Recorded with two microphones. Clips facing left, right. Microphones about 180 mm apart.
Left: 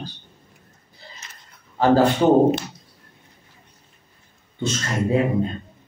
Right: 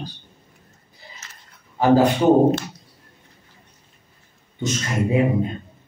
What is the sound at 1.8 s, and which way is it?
Speech, 15° right (ahead or behind).